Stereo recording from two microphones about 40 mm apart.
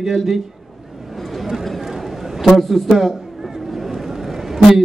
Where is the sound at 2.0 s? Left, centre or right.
Centre.